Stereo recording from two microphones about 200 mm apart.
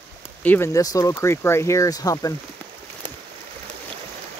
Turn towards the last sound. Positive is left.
turn(degrees=5)  # may be behind; listen again after turning